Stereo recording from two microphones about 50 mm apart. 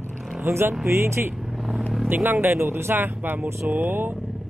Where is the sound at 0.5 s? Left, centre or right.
Right.